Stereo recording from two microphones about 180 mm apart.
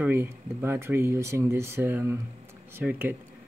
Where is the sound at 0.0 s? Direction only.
10° right (ahead or behind).